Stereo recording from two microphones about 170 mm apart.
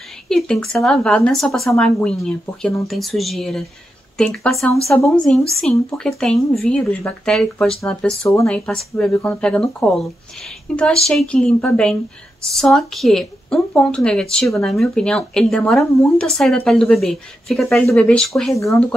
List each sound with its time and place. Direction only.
0.3 s speech: 5° left (ahead or behind)
18.5 s speech: 20° left (ahead or behind)